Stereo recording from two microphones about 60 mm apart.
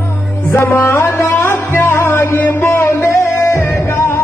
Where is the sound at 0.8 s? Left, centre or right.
Left.